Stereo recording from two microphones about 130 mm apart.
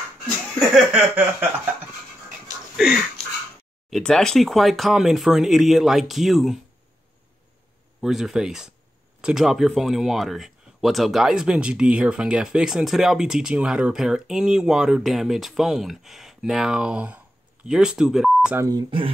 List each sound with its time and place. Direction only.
0.6 s speech: centre (ahead or behind)
2.8 s speech: centre (ahead or behind)
8.0 s speech: centre (ahead or behind)
18.6 s speech: 30° right (ahead or behind)